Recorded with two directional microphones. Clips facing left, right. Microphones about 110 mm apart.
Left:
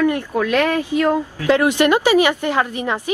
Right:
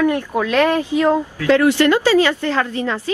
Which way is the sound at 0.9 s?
15° right (ahead or behind).